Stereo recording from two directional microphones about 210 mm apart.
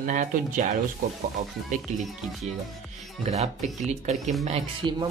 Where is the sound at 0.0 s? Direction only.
40° right (ahead or behind).